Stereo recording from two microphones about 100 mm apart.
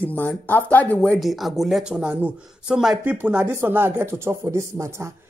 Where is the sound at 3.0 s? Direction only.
20° right (ahead or behind).